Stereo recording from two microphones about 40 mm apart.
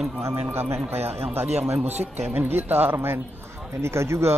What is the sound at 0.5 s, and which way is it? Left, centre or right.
Speech, right.